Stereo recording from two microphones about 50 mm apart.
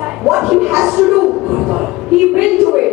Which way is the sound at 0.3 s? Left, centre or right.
Centre.